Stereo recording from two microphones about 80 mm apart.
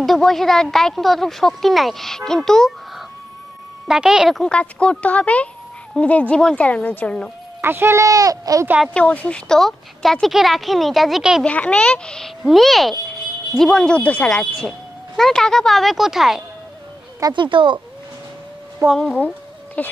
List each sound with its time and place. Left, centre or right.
0.0 s a woman's voice: centre
3.8 s a woman's voice: centre
4.4 s speech: centre
7.6 s speech: right
8.0 s speech: right
8.9 s speech: centre
9.5 s a woman's voice: centre
11.4 s speech: centre
12.4 s a woman's voice: centre
15.1 s a woman's voice: centre
17.3 s speech: right
18.8 s speech: right
19.1 s a sound: centre